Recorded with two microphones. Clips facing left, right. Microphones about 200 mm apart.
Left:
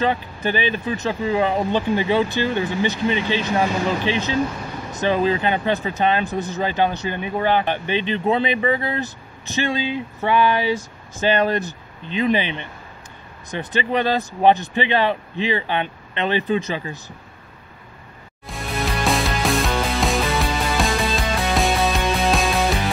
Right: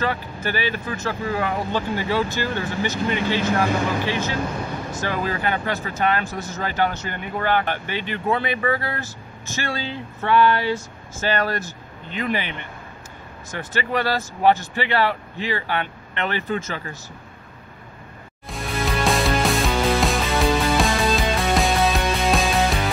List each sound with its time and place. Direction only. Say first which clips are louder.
0.0 s speech: left 4 dB; 20° left (ahead or behind)
18.5 s music: even; centre (ahead or behind)